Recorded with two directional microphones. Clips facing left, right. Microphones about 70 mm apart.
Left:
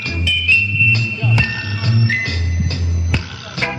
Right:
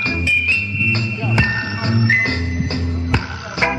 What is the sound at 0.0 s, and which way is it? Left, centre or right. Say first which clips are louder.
Music: right 2 dB; right.